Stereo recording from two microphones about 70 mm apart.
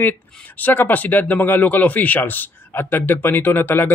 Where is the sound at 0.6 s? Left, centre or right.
Left.